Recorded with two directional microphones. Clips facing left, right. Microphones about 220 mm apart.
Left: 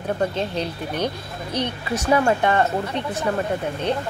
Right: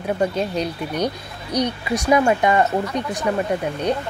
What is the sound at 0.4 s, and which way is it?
Speech, 10° right (ahead or behind).